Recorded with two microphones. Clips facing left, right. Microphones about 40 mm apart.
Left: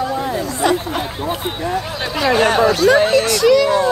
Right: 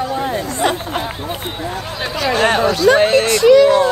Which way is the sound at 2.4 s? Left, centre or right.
Right.